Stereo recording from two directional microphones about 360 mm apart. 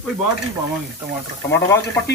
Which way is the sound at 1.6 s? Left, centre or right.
Centre.